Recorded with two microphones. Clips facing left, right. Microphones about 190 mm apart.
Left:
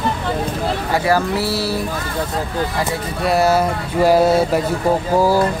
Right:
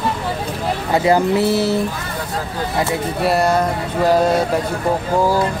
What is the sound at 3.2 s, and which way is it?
Speech, 5° left (ahead or behind).